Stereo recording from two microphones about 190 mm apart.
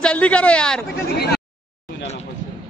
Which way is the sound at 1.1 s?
60° left (ahead or behind).